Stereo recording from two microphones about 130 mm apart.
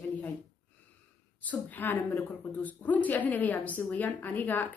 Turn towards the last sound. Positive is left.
turn(degrees=15)  # may be behind; listen again after turning